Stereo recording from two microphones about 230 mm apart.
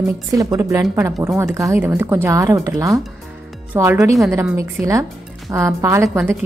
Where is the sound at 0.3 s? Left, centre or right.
Centre.